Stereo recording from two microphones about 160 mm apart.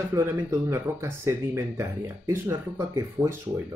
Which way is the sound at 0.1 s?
15° right (ahead or behind).